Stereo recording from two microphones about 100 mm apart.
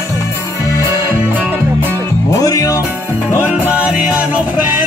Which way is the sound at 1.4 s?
20° right (ahead or behind).